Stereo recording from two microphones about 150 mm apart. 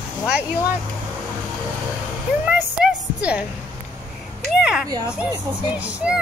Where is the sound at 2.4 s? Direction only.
5° right (ahead or behind).